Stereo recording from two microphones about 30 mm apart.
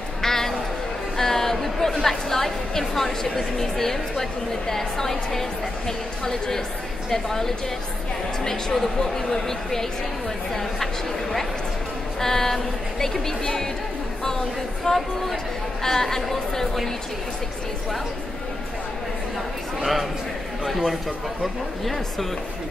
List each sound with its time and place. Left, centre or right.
0.2 s a sound: centre
2.8 s a woman's voice: centre
8.7 s a woman's voice: centre
12.2 s a woman's voice: centre
14.9 s a woman's voice: centre
20.6 s speech: centre